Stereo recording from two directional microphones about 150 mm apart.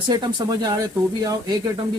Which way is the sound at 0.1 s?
25° right (ahead or behind).